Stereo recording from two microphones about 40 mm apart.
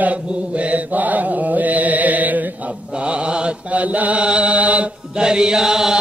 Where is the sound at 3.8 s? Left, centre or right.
Right.